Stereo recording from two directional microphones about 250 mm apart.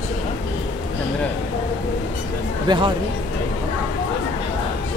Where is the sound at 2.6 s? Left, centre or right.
Centre.